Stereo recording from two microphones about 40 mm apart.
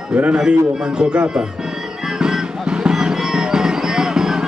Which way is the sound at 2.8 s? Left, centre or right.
Centre.